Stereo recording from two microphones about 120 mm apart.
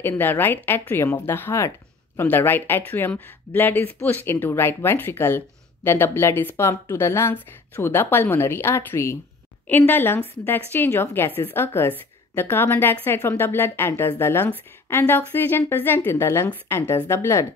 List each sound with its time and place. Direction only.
0.2 s speech: 15° left (ahead or behind)